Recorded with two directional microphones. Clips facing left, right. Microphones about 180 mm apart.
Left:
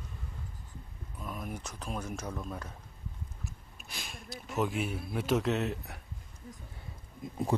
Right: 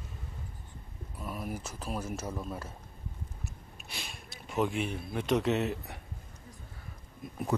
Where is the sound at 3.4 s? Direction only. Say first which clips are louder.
Right 1 dB; centre (ahead or behind).